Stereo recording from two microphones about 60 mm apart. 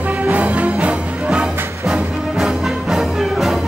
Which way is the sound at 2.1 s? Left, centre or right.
Centre.